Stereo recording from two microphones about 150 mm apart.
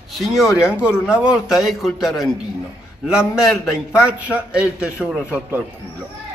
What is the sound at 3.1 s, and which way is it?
A man's voice, centre (ahead or behind).